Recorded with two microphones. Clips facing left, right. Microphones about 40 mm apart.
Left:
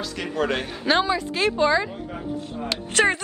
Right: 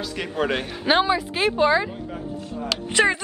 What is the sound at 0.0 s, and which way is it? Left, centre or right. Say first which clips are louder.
A woman's voice: even; centre.